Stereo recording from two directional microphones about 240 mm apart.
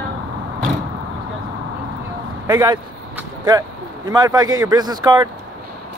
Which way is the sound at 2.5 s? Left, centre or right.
Centre.